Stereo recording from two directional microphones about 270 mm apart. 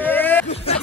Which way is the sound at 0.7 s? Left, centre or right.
Left.